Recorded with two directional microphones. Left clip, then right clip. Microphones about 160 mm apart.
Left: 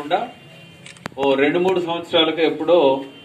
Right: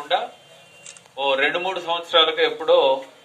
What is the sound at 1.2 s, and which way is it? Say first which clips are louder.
A man's voice: left 3 dB; 20° left (ahead or behind).